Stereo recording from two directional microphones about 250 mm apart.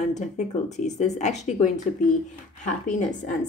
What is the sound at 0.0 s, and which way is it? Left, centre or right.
Speech, left.